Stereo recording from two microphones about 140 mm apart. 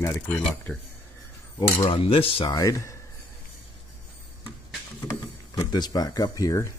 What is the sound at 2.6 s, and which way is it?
Speech, 25° left (ahead or behind).